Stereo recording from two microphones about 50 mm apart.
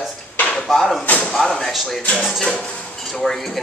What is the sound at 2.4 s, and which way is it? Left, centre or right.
Speech, centre.